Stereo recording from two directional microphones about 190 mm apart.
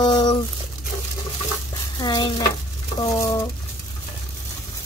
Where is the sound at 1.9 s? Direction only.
20° left (ahead or behind).